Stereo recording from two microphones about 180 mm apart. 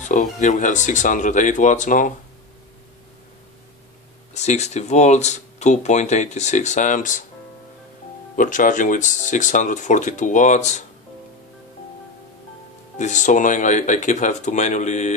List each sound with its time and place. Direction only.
0.0 s speech: 45° left (ahead or behind)
4.3 s speech: 40° left (ahead or behind)
8.4 s speech: 45° left (ahead or behind)
12.9 s speech: 40° left (ahead or behind)